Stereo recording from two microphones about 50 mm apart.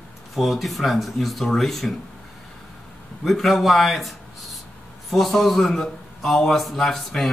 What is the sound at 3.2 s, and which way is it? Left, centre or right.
A man's voice, centre.